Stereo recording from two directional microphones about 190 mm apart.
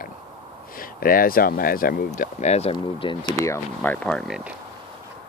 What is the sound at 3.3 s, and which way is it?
Speech, 10° left (ahead or behind).